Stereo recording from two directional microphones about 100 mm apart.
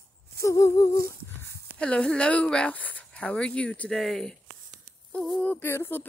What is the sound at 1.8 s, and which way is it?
Speech, 10° left (ahead or behind).